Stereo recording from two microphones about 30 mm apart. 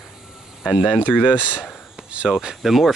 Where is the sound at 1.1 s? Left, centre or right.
Right.